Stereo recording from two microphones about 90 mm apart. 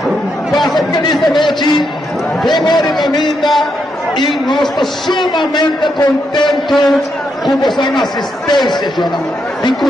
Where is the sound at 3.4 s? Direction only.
Centre (ahead or behind).